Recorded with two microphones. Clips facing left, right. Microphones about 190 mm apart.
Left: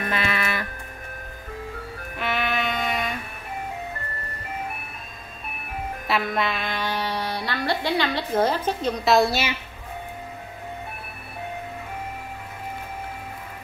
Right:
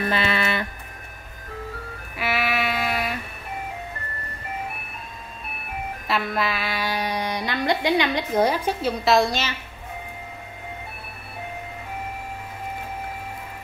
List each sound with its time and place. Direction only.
0.0 s a sound: 30° right (ahead or behind)
2.1 s music: 5° right (ahead or behind)
6.0 s music: centre (ahead or behind)